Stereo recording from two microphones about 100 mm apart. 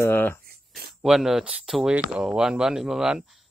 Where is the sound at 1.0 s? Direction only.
5° right (ahead or behind).